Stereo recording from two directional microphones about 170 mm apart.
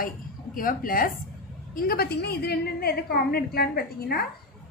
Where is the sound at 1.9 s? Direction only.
65° left (ahead or behind).